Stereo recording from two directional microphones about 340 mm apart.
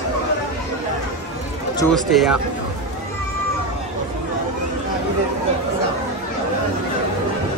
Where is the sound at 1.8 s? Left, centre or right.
Centre.